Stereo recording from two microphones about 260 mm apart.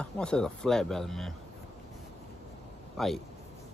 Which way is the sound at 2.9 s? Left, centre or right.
Centre.